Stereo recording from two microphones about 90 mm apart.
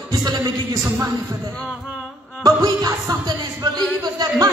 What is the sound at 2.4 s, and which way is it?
Music, 45° right (ahead or behind).